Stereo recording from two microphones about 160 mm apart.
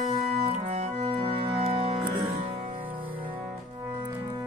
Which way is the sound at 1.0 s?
35° right (ahead or behind).